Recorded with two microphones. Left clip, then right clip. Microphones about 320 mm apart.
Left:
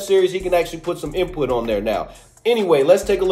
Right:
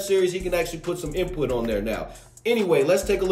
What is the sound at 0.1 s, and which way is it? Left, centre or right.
Speech, left.